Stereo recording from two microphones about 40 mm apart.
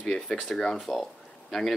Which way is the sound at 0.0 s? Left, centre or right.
Centre.